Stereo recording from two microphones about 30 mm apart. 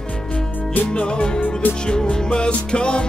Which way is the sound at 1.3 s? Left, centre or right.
Left.